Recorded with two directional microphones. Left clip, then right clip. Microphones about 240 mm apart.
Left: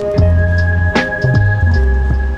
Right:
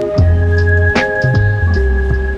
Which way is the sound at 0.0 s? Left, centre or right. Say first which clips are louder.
Left 1 dB; centre.